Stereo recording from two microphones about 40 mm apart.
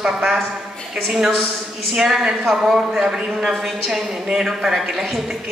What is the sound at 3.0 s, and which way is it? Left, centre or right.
Speech, centre.